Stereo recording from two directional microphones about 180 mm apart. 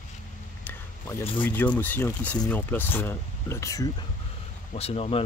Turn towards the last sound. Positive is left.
turn(degrees=30)  # may be behind; listen again after turning